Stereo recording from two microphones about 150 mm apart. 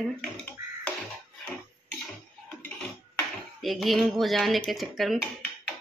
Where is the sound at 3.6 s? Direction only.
Centre (ahead or behind).